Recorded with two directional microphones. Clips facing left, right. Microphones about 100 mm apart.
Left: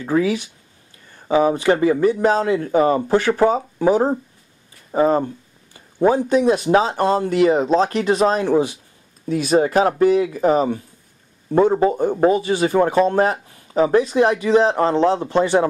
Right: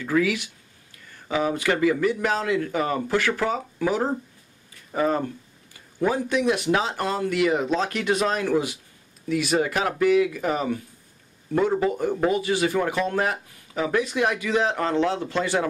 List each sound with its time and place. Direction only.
0.0 s a man's voice: 30° left (ahead or behind)